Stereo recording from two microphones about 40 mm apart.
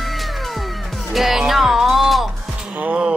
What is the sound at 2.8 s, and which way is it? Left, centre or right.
Music, right.